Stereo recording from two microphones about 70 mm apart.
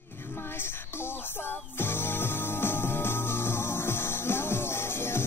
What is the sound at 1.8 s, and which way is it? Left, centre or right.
Music, left.